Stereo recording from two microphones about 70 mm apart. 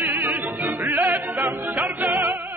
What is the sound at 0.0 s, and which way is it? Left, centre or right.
Music, right.